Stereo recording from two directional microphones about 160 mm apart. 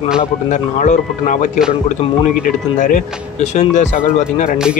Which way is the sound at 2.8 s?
50° left (ahead or behind).